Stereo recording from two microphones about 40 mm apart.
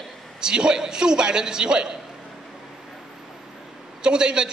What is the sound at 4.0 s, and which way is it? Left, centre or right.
Speech, right.